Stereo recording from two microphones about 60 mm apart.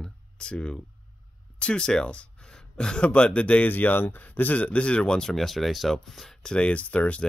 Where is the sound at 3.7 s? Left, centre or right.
Left.